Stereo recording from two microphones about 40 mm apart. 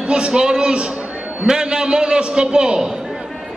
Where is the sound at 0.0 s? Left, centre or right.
Right.